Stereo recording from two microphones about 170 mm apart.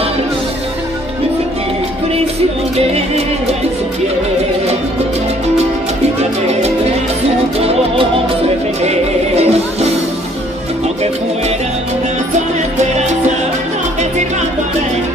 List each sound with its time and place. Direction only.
8.8 s music: 40° right (ahead or behind)